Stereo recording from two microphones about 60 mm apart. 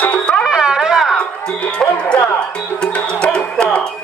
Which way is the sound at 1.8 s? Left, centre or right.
Centre.